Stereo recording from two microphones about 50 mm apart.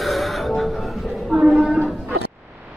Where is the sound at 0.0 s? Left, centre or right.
Centre.